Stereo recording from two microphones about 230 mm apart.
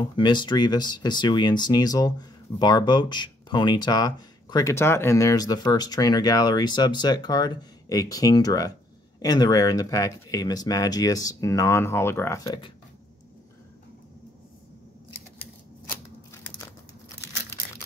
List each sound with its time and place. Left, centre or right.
0.0 s speech: centre